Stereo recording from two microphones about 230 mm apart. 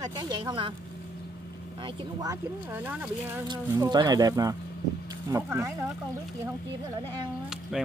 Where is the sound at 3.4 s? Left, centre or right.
Centre.